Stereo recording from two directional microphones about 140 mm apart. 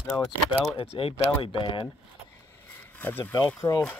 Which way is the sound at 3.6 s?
25° left (ahead or behind).